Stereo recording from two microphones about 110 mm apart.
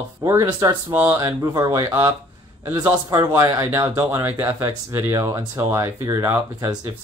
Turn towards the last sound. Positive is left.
turn(degrees=-25)  # may be behind; listen again after turning